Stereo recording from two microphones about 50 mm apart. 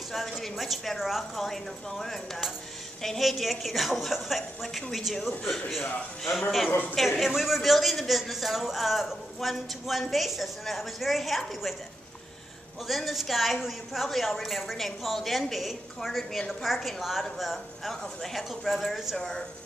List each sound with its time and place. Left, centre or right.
0.1 s a man's voice: centre
6.7 s a woman's voice: left
7.2 s a man's voice: centre
12.8 s a man's voice: centre
19.1 s a woman's voice: centre